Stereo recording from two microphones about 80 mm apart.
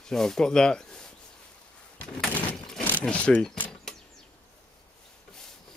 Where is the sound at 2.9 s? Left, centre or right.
Centre.